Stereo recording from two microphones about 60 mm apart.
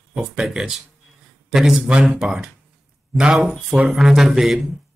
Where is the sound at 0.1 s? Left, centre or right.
Centre.